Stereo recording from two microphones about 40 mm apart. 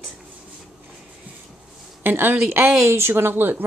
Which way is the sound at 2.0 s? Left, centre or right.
Right.